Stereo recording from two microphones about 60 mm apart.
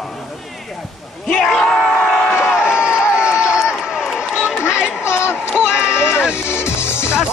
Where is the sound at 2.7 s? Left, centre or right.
Centre.